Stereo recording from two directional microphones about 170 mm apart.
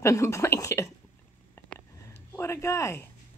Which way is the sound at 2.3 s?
15° left (ahead or behind).